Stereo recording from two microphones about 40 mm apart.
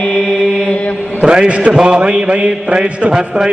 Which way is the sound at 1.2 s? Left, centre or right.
Right.